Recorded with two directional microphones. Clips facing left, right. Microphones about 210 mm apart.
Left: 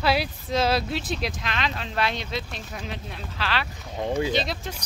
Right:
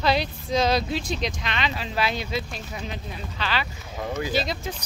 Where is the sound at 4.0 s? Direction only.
25° left (ahead or behind).